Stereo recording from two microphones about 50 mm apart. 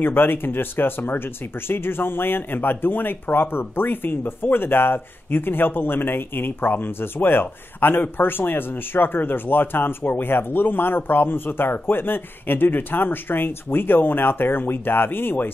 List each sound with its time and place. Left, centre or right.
0.0 s speech: left